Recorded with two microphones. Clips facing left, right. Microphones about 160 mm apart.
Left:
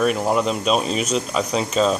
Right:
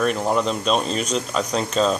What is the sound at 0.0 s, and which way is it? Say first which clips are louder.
Speech: left 1 dB; 5° left (ahead or behind).